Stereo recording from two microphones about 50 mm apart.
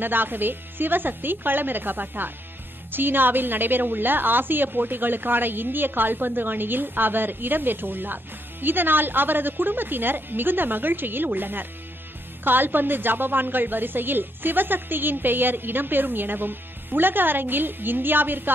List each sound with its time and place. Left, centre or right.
0.0 s a woman's voice: right